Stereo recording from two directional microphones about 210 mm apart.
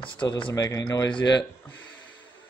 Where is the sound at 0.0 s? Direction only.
25° left (ahead or behind).